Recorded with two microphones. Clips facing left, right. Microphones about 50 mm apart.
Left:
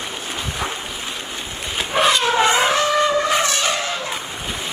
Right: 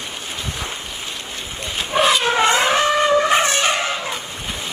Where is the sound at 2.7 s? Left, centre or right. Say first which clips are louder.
Right 1 dB; right.